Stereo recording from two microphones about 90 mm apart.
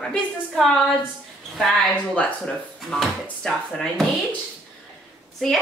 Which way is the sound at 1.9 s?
15° left (ahead or behind).